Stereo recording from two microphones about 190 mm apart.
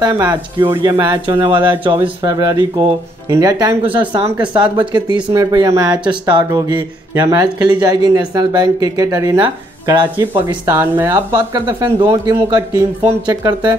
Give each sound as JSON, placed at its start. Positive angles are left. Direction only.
{"t": 0.0, "sound": "speech", "side_deg": -20}
{"t": 3.8, "sound": "speech", "side_deg": -10}
{"t": 4.6, "sound": "speech", "side_deg": -25}
{"t": 10.6, "sound": "speech", "side_deg": -10}